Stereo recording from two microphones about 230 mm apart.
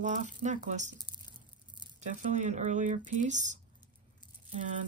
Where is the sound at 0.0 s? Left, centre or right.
Right.